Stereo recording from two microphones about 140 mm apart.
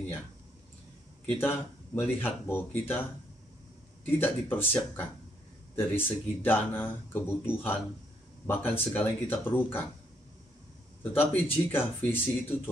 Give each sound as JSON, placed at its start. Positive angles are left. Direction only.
{"t": 1.3, "sound": "speech", "side_deg": 15}
{"t": 4.0, "sound": "speech", "side_deg": 15}
{"t": 11.0, "sound": "speech", "side_deg": 15}